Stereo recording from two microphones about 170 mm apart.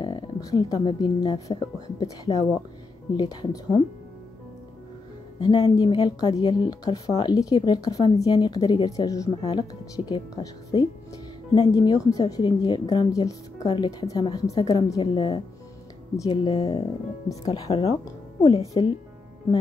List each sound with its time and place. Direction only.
0.0 s a woman's voice: 25° left (ahead or behind)
5.4 s a woman's voice: 25° left (ahead or behind)